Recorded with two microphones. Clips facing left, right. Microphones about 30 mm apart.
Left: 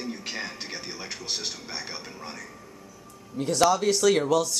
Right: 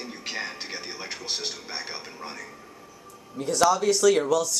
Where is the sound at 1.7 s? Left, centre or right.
Right.